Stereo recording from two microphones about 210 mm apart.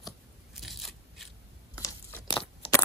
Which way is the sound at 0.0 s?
Centre (ahead or behind).